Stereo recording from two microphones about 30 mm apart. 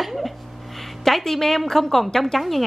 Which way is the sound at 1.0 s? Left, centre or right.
Centre.